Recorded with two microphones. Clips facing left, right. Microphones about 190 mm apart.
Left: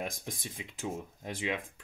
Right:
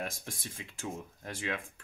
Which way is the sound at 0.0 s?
15° left (ahead or behind).